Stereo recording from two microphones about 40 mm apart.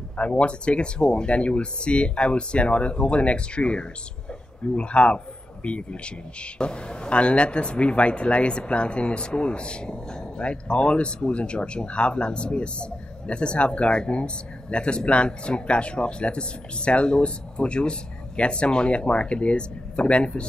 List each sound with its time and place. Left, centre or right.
0.2 s a man's voice: left